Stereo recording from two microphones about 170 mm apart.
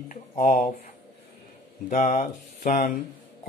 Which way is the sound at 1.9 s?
50° left (ahead or behind).